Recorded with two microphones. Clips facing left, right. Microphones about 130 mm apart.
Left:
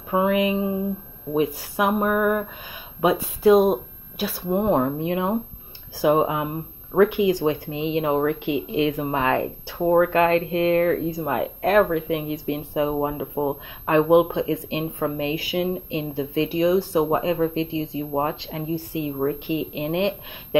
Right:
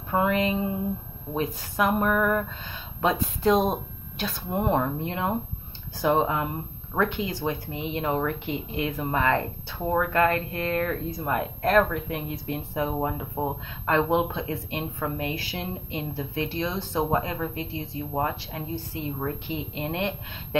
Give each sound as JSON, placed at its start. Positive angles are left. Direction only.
{"t": 0.1, "sound": "speech", "side_deg": 15}
{"t": 4.7, "sound": "speech", "side_deg": 15}